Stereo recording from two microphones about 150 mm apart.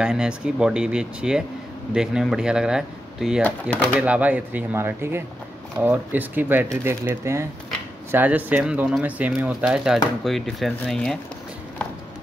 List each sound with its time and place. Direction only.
0.0 s speech: 5° right (ahead or behind)